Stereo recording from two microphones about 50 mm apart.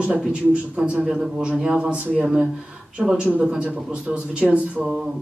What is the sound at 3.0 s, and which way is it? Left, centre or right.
Speech, centre.